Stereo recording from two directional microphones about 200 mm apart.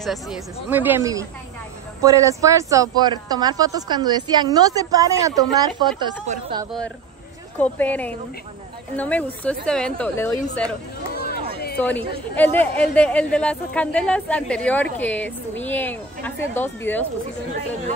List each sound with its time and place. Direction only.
0.0 s speech: centre (ahead or behind); by 5.9 s 20° right (ahead or behind)
7.5 s speech: 10° left (ahead or behind)
11.8 s speech: 10° left (ahead or behind)